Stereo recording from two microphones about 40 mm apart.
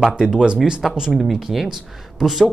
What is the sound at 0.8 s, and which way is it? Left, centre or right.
Speech, centre.